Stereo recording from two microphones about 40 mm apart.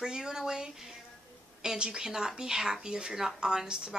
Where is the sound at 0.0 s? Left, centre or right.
Centre.